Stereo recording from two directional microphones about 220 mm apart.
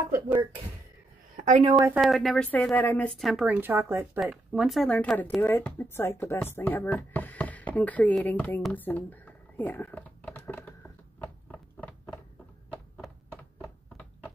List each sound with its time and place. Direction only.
1.3 s a woman's voice: 30° right (ahead or behind)
1.9 s speech: centre (ahead or behind)
11.5 s a sound: 5° left (ahead or behind)